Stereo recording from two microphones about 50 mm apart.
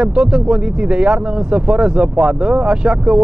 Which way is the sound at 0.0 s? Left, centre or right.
Centre.